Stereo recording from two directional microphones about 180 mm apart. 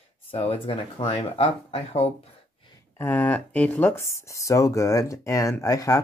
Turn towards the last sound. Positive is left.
turn(degrees=20)  # may be behind; listen again after turning